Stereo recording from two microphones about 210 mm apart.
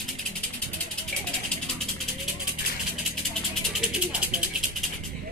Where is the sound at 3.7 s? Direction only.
5° right (ahead or behind).